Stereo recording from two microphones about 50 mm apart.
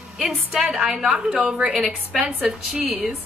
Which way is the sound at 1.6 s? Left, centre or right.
Centre.